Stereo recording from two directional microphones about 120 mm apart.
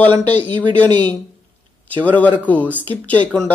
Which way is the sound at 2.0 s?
10° left (ahead or behind).